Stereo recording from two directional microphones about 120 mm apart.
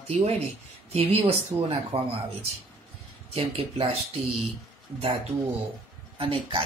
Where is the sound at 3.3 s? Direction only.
55° right (ahead or behind).